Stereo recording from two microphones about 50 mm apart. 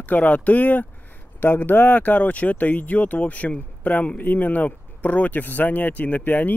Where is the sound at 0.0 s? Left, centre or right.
Left.